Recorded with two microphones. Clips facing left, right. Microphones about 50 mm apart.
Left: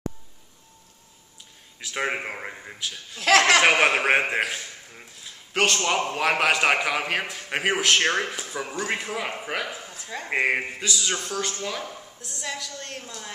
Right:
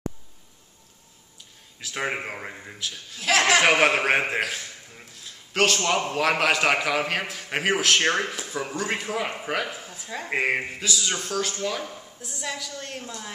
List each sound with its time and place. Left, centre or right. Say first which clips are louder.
1.8 s a man's voice: left 1 dB; centre
3.2 s speech: left 2 dB; left
3.6 s a man's voice: even; centre